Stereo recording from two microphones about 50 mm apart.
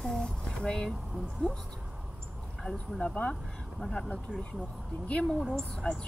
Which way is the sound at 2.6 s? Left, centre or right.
Centre.